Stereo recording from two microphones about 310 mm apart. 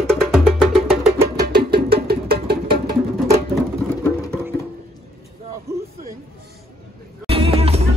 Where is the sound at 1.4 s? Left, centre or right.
Right.